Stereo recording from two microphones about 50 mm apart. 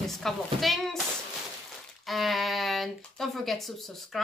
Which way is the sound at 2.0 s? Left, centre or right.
Centre.